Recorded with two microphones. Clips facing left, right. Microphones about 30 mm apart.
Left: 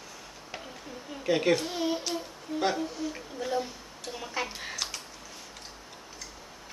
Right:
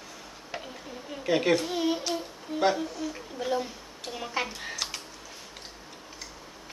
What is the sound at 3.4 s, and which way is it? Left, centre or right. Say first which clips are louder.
A woman's voice: right 2 dB; centre.